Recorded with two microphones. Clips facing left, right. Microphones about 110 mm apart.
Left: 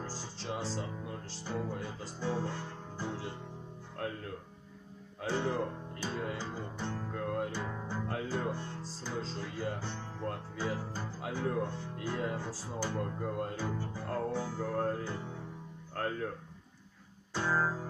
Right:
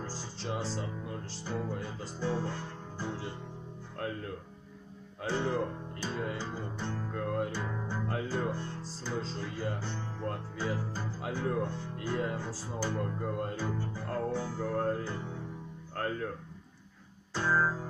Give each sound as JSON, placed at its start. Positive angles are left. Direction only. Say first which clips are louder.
{"t": 0.0, "sound": "speech", "louder": "right 2 dB", "side_deg": 5}
{"t": 5.2, "sound": "speech", "louder": "right 1 dB", "side_deg": 5}
{"t": 6.8, "sound": "music", "louder": "right 1 dB", "side_deg": 5}
{"t": 9.2, "sound": "speech", "louder": "right 1 dB", "side_deg": 5}
{"t": 17.3, "sound": "guitar", "louder": "right 2 dB", "side_deg": 10}